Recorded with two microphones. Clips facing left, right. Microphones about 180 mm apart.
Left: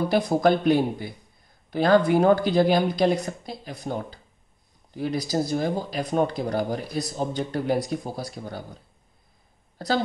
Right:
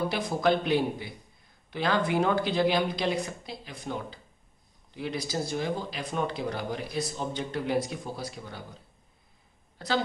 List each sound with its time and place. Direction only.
0.3 s speech: 45° left (ahead or behind)
9.8 s speech: 40° left (ahead or behind)